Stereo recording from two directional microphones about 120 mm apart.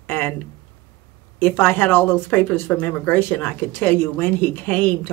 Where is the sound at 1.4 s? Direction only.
15° left (ahead or behind).